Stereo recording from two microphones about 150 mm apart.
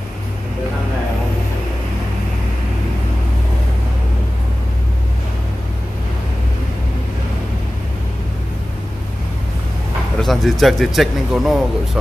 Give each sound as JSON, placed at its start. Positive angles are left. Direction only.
{"t": 10.2, "sound": "speech", "side_deg": 0}